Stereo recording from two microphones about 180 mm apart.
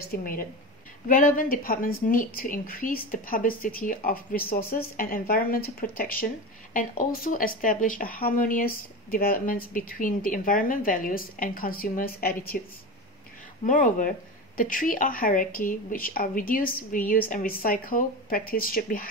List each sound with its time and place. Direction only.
0.1 s speech: 50° left (ahead or behind)
13.7 s speech: 45° left (ahead or behind)